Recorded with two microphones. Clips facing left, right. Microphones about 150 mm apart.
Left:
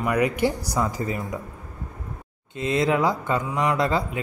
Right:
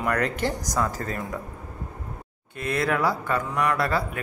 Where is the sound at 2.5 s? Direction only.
20° left (ahead or behind).